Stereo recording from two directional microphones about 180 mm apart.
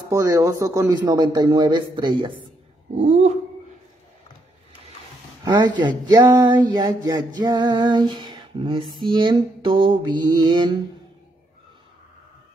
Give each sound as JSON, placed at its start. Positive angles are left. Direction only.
{"t": 0.1, "sound": "a man's voice", "side_deg": -20}
{"t": 3.1, "sound": "dog", "side_deg": -40}
{"t": 5.4, "sound": "a man's voice", "side_deg": -25}